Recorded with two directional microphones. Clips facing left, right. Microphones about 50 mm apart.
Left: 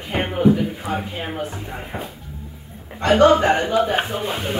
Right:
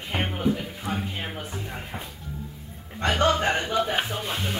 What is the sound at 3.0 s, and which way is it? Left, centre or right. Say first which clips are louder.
Speech: left 9 dB; left.